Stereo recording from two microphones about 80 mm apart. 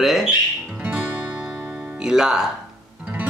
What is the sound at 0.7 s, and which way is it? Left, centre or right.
Music, centre.